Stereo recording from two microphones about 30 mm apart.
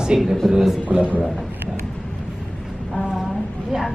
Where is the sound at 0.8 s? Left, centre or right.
Right.